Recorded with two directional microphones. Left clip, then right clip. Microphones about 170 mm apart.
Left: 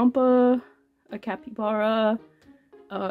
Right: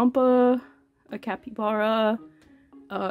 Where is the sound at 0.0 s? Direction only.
20° right (ahead or behind).